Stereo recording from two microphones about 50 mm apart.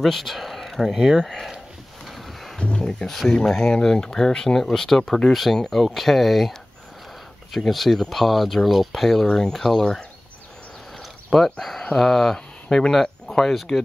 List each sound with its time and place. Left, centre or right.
0.0 s speech: centre
1.2 s speech: centre
2.0 s a sound: centre
2.6 s speech: centre
7.5 s speech: centre
11.2 s speech: centre
12.6 s speech: centre